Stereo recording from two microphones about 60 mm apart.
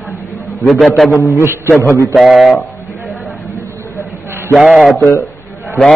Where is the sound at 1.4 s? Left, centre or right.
Right.